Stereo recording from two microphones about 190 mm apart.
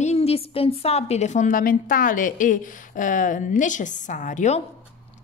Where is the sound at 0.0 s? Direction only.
35° left (ahead or behind).